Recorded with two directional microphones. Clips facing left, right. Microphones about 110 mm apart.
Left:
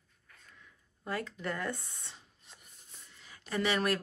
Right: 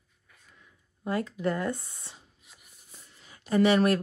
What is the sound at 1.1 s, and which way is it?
Speech, 20° right (ahead or behind).